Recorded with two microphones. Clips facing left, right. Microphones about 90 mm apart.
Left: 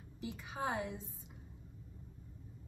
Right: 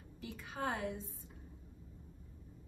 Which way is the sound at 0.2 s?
20° left (ahead or behind).